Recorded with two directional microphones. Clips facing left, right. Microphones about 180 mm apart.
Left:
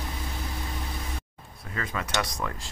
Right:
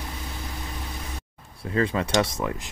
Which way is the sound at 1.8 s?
30° right (ahead or behind).